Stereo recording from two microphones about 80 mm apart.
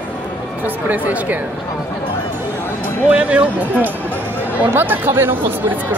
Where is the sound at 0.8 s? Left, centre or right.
Right.